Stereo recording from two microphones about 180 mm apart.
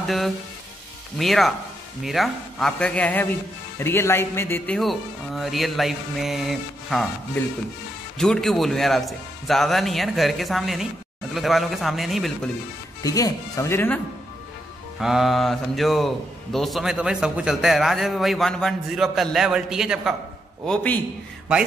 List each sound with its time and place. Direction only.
0.0 s a man's voice: centre (ahead or behind)
4.7 s a man's voice: centre (ahead or behind)
8.2 s a man's voice: 5° left (ahead or behind)
13.0 s speech: 20° left (ahead or behind)
15.0 s a man's voice: centre (ahead or behind)